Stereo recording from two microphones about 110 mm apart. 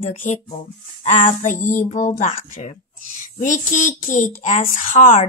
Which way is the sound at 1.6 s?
90° left.